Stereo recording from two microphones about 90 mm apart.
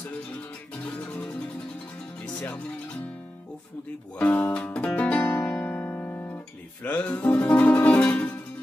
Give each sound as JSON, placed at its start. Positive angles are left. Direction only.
{"t": 0.8, "sound": "music", "side_deg": 15}
{"t": 4.2, "sound": "music", "side_deg": 15}
{"t": 5.9, "sound": "guitar", "side_deg": 20}